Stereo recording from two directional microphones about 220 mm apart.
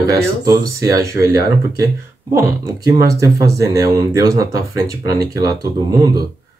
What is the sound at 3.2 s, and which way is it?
Speech, 15° right (ahead or behind).